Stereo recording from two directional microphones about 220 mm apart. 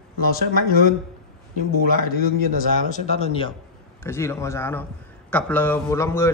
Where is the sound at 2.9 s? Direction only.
30° left (ahead or behind).